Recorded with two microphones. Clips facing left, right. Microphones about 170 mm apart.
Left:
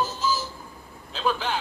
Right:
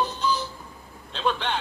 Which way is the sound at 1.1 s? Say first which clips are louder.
Even; 5° left (ahead or behind).